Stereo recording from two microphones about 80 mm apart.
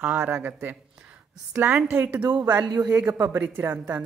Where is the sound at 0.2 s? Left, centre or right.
Right.